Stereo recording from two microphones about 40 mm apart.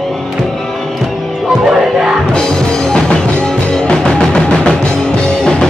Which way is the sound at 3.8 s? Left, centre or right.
Left.